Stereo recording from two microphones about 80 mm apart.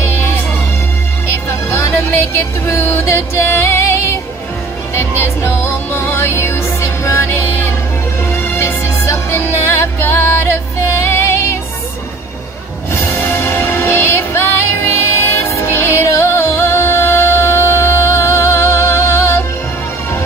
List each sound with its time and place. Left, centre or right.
1.9 s music: left
12.9 s music: left